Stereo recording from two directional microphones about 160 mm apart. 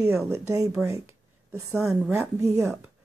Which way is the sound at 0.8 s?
20° right (ahead or behind).